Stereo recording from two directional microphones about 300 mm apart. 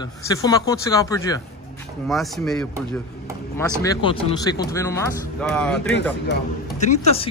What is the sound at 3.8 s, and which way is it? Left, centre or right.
Speech, centre.